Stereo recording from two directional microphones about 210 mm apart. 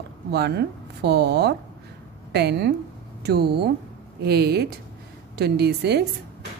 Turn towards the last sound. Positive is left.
turn(degrees=-50)  # may be behind; listen again after turning